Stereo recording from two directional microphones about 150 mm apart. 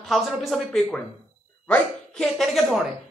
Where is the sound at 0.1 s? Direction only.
Centre (ahead or behind).